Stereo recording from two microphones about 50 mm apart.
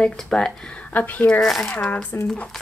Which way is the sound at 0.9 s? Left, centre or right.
Left.